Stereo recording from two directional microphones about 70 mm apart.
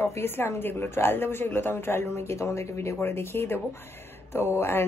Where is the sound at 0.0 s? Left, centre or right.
Left.